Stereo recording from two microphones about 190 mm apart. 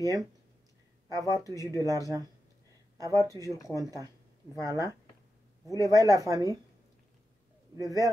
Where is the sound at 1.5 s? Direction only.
20° right (ahead or behind).